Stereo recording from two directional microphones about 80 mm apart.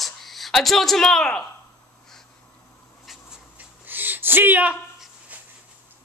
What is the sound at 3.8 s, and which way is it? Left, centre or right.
Gasp, right.